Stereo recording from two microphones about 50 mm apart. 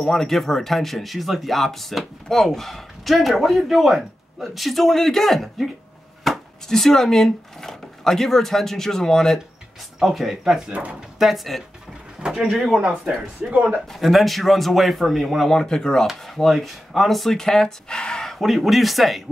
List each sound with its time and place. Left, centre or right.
0.0 s speech: centre
9.9 s speech: centre
10.7 s speech: right
11.1 s speech: centre
13.4 s speech: right
13.8 s speech: centre
16.3 s speech: centre
18.3 s speech: centre